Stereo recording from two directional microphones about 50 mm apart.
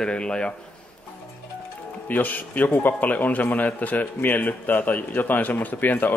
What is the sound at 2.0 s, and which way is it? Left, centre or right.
A man's voice, left.